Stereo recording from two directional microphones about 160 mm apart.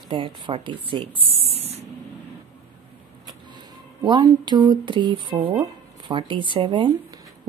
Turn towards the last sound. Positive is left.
turn(degrees=-30)  # may be behind; listen again after turning